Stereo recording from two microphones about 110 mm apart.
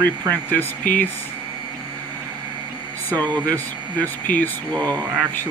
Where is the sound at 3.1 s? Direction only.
15° left (ahead or behind).